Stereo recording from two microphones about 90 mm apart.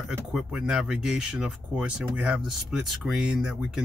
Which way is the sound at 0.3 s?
5° right (ahead or behind).